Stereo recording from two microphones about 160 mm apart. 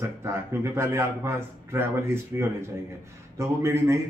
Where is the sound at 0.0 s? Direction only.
15° right (ahead or behind).